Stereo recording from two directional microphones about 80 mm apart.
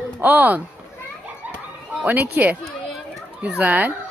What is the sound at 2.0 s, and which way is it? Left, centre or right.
A woman's voice, right.